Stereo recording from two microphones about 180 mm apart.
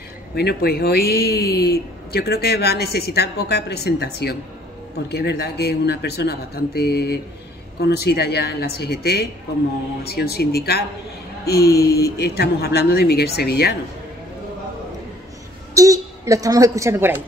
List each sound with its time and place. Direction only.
0.3 s speech: 60° left (ahead or behind)
15.7 s a woman's voice: 20° right (ahead or behind)